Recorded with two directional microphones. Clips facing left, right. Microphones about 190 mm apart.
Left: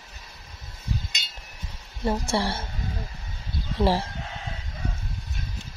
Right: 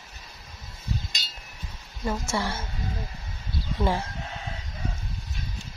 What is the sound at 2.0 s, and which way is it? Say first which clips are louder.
Speech: left 3 dB; 35° left (ahead or behind).